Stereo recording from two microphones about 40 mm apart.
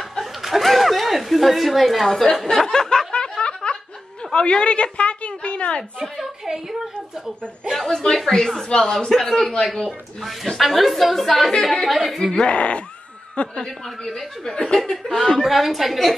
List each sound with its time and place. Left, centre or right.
0.2 s a sound: centre
2.0 s speech: centre
2.5 s a sound: centre
3.1 s snicker: left
4.3 s a sound: left
6.1 s a sound: centre
7.7 s speech: centre
9.1 s speech: centre
9.4 s speech: centre
10.2 s speech: centre
11.9 s speech: centre
12.4 s speech: left
13.6 s speech: centre
15.4 s speech: centre